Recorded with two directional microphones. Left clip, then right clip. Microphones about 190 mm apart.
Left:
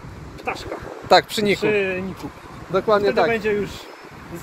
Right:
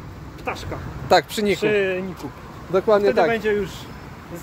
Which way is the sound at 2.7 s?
25° right (ahead or behind).